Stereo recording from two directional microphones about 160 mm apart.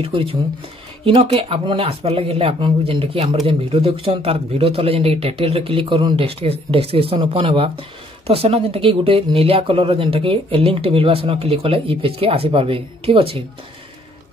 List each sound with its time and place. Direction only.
0.0 s speech: 35° right (ahead or behind)